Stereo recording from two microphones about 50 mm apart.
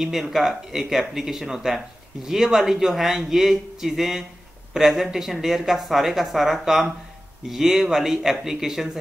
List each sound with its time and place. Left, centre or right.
0.0 s speech: centre